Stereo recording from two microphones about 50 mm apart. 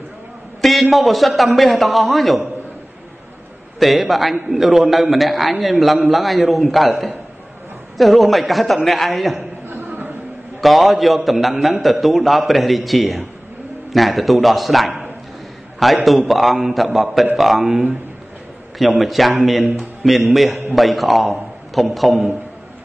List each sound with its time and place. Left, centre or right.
0.6 s a man's voice: centre
3.8 s a man's voice: centre
9.7 s a sound: right
10.6 s a man's voice: centre